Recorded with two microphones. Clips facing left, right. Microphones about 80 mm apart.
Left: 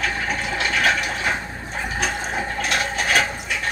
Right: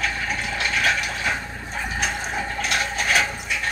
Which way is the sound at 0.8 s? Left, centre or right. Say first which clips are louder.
Left 2 dB; left.